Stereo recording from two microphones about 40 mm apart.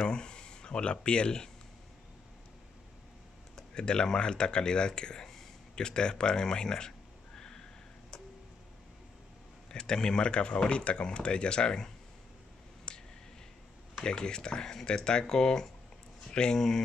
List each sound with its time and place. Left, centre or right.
0.1 s speech: left
3.5 s speech: left
7.3 s a sound: centre
9.7 s speech: centre
12.9 s a sound: left
14.0 s speech: centre